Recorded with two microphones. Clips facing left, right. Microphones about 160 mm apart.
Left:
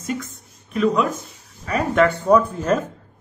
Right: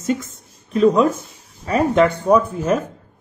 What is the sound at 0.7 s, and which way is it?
A man's voice, 30° right (ahead or behind).